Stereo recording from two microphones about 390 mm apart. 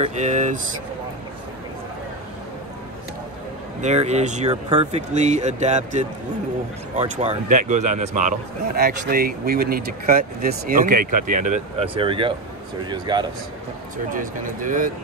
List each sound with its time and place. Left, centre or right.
0.0 s speech: centre
3.8 s a man's voice: centre